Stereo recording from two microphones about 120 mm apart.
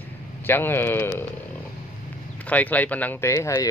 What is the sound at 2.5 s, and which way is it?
Speech, 15° left (ahead or behind).